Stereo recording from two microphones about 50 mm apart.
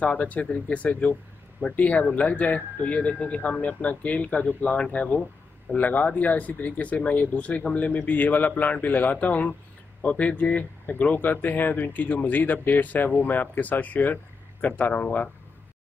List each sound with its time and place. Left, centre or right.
0.0 s speech: left